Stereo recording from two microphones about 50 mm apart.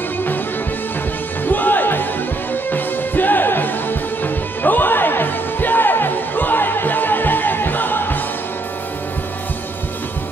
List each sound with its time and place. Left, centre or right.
1.4 s music: left